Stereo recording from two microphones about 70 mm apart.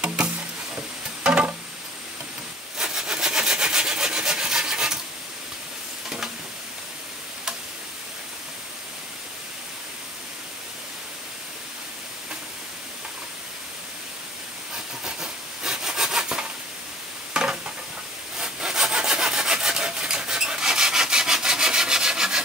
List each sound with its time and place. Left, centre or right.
0.0 s music: centre
2.8 s wood: centre
6.0 s stir: centre
15.0 s wood: centre
17.3 s a sound: centre
18.4 s sawing: centre